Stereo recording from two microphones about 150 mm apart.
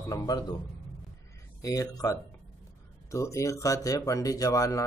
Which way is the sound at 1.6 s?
25° left (ahead or behind).